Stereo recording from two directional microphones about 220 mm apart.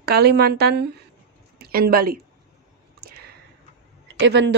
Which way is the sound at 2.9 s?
45° right (ahead or behind).